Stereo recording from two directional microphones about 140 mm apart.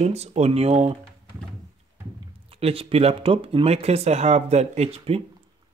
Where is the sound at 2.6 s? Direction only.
45° right (ahead or behind).